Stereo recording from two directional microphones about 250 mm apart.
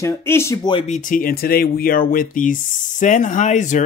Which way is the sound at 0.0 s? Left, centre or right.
Centre.